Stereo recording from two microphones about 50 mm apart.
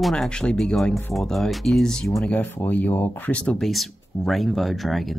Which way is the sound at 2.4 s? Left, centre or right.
Left.